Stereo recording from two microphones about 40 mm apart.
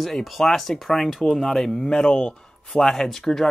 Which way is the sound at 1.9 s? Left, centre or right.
Left.